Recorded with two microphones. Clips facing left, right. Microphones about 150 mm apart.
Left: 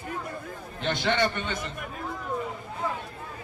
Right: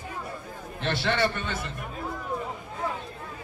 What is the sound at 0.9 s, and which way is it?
Speech, 15° left (ahead or behind).